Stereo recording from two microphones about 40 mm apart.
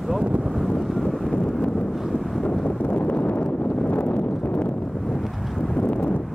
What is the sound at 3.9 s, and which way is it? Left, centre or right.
Wind noise, left.